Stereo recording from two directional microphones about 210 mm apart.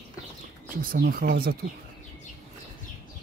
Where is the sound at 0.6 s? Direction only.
40° right (ahead or behind).